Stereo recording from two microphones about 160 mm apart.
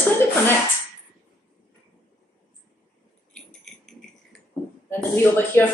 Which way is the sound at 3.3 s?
5° left (ahead or behind).